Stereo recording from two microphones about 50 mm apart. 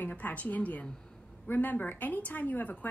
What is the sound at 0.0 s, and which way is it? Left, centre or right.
Speech, left.